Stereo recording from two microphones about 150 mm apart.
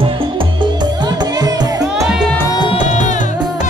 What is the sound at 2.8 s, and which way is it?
Music, 55° left (ahead or behind).